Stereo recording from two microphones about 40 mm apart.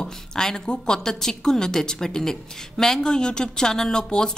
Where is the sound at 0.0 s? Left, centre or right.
Centre.